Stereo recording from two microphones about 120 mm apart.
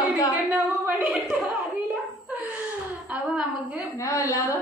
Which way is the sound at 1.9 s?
10° right (ahead or behind).